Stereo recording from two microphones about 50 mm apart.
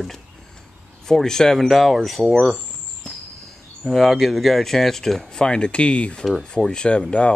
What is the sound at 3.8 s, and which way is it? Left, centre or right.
Speech, centre.